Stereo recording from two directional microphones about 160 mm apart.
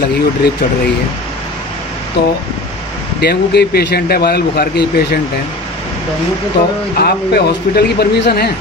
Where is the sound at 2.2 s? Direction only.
90° left.